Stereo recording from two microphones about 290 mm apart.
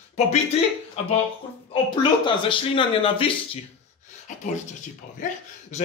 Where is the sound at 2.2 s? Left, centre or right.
Centre.